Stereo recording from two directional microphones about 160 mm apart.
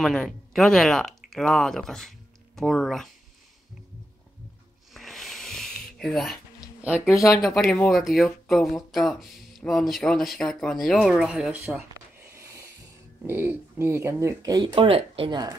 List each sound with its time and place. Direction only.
0.0 s speech: centre (ahead or behind)
4.9 s a sound: centre (ahead or behind)
7.3 s speech: centre (ahead or behind)
12.2 s a sound: 20° right (ahead or behind)
13.3 s speech: 15° right (ahead or behind)
14.8 s speech: 35° right (ahead or behind)